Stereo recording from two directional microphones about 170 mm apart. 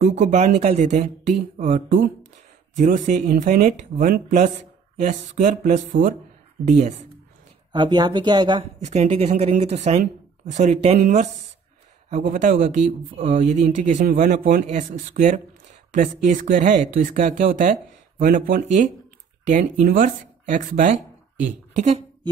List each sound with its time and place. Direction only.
0.3 s a woman's voice: 40° right (ahead or behind)
7.7 s speech: 25° right (ahead or behind)
8.7 s a woman's voice: 40° right (ahead or behind)
12.1 s a woman's voice: 50° right (ahead or behind)